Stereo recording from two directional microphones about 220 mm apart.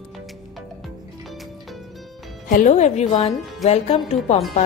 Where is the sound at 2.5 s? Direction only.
35° left (ahead or behind).